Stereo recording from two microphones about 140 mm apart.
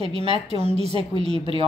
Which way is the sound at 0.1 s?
45° right (ahead or behind).